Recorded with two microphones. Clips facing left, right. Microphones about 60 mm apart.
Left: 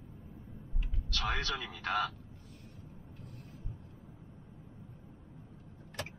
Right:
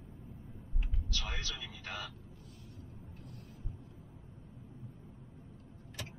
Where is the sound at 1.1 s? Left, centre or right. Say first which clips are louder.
Left 7 dB; left.